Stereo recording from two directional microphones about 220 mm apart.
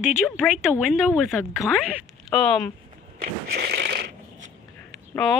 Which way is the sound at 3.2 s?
45° right (ahead or behind).